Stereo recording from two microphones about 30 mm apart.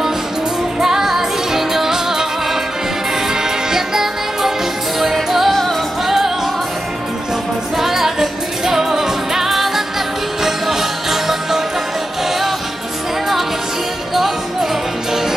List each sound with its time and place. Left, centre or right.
0.7 s music: centre
3.3 s music: centre
5.5 s music: centre
6.0 s music: centre
7.7 s music: centre
14.1 s music: centre